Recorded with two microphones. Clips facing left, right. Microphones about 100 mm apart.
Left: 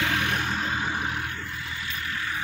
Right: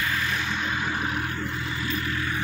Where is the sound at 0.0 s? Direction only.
65° left (ahead or behind); by 1.0 s 30° left (ahead or behind).